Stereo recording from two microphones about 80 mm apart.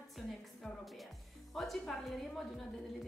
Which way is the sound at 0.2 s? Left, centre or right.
Centre.